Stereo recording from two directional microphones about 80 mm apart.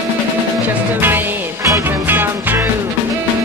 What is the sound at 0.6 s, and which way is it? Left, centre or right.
Music, right.